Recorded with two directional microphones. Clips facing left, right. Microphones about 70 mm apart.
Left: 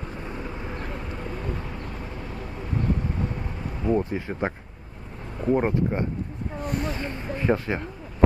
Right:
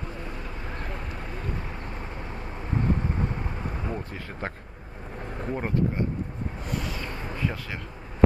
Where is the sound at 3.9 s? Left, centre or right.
Left.